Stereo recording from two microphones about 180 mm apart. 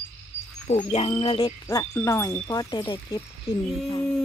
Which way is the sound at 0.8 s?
30° left (ahead or behind).